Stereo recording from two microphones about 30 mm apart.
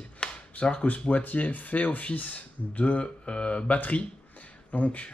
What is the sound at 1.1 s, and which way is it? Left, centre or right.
Speech, left.